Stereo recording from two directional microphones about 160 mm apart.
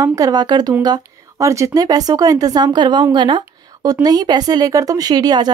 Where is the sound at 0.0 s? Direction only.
20° right (ahead or behind).